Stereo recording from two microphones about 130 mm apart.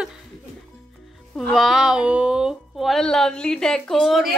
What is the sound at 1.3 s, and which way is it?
Speech, centre (ahead or behind).